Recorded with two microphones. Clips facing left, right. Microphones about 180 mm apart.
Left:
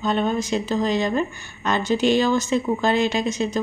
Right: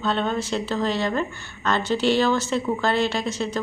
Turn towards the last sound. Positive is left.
turn(degrees=15)  # may be behind; listen again after turning